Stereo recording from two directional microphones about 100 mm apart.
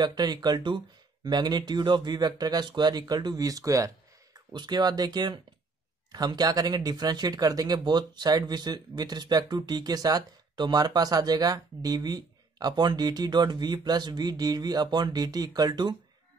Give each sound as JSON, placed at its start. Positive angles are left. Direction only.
{"t": 0.0, "sound": "speech", "side_deg": -45}